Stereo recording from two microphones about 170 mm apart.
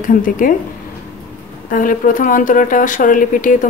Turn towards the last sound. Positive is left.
turn(degrees=50)  # may be behind; listen again after turning